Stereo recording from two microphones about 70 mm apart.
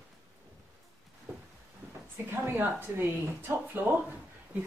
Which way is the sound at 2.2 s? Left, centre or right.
Right.